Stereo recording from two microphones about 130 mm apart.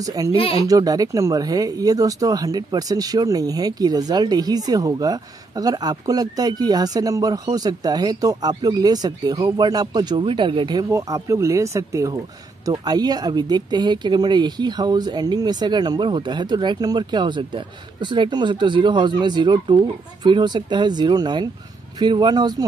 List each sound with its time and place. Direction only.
0.0 s speech: 30° right (ahead or behind)
0.4 s speech: 45° left (ahead or behind)
0.7 s speech: 30° right (ahead or behind)